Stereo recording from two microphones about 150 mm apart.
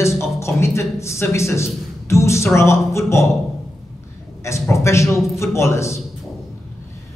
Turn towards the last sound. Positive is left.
turn(degrees=20)  # may be behind; listen again after turning